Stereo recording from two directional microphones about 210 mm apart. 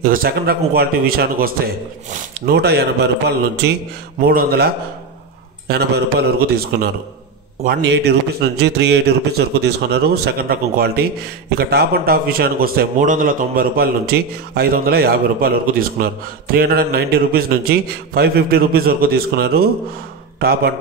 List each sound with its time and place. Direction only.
0.0 s a man's voice: 45° right (ahead or behind)
5.7 s a man's voice: 50° right (ahead or behind)